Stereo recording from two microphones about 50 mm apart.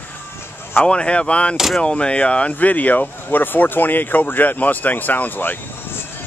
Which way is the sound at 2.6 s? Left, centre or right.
Left.